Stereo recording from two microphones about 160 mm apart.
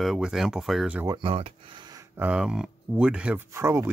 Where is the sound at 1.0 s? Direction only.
30° right (ahead or behind).